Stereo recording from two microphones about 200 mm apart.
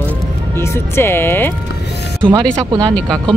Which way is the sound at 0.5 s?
10° left (ahead or behind).